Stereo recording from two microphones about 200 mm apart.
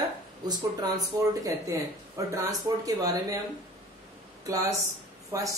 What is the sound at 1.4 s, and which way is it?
Speech, 15° right (ahead or behind).